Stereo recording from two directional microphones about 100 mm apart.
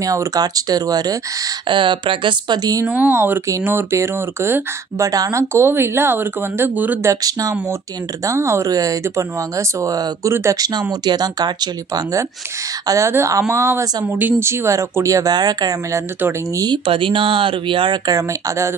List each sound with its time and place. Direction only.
0.0 s speech: 35° right (ahead or behind)
1.7 s speech: 55° right (ahead or behind); by 2.9 s 40° right (ahead or behind)
2.9 s speech: 20° right (ahead or behind); by 5.4 s 35° right (ahead or behind)
5.4 s speech: 25° right (ahead or behind)
7.1 s speech: 40° right (ahead or behind)
16.8 s speech: 60° right (ahead or behind)